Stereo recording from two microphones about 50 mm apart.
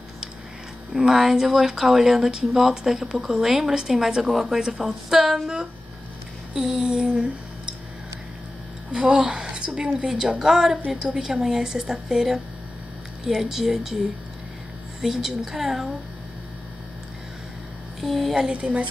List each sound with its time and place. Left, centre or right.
0.9 s speech: centre
8.9 s speech: centre
15.0 s a woman's voice: centre
18.0 s a woman's voice: centre
18.5 s a woman's voice: right